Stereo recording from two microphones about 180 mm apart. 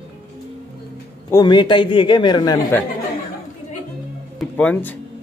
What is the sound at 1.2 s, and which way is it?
A man's voice, 25° left (ahead or behind).